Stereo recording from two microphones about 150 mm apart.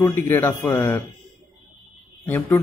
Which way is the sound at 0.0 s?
15° left (ahead or behind).